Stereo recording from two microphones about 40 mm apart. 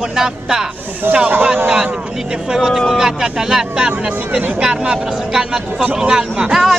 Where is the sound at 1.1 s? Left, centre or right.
Right.